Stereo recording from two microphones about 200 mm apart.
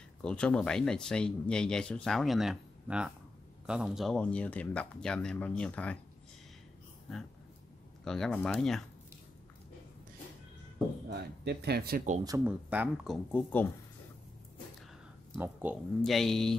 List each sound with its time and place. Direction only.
0.2 s speech: 5° left (ahead or behind)
8.0 s speech: 5° left (ahead or behind)
11.1 s speech: 55° right (ahead or behind)
12.4 s speech: 10° right (ahead or behind)
15.3 s speech: 10° right (ahead or behind)
16.0 s speech: centre (ahead or behind)